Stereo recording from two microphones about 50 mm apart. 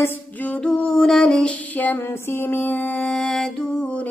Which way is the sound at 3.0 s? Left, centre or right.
Left.